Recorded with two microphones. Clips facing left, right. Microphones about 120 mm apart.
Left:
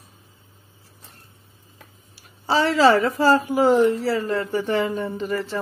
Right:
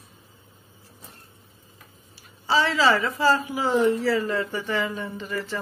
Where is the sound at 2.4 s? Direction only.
45° left (ahead or behind).